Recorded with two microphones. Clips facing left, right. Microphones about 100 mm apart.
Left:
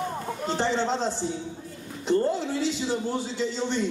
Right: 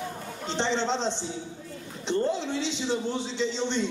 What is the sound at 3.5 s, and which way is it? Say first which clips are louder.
Speech: left 1 dB; 5° left (ahead or behind).